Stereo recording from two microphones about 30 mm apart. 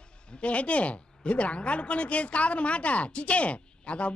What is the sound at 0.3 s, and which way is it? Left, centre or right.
A woman's voice, left.